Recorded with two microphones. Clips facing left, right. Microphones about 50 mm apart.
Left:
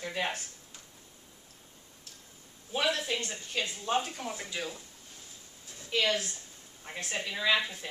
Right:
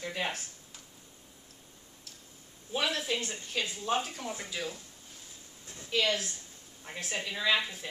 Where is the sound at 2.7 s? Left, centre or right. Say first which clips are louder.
Left 1 dB; centre.